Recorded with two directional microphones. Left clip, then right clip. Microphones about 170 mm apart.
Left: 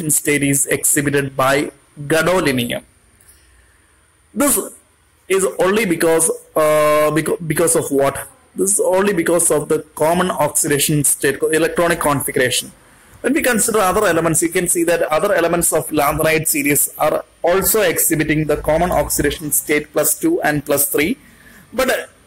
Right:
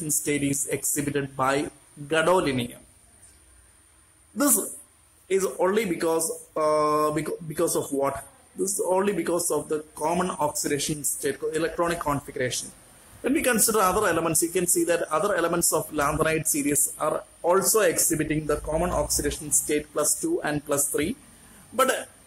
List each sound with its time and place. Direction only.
0.2 s speech: 10° left (ahead or behind)
5.3 s speech: 20° left (ahead or behind)
13.2 s speech: 5° left (ahead or behind)